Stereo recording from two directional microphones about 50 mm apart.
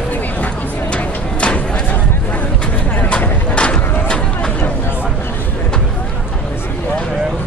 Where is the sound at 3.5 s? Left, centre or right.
Left.